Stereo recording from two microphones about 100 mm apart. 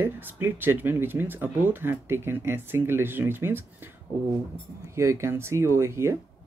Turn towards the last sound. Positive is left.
turn(degrees=-30)  # may be behind; listen again after turning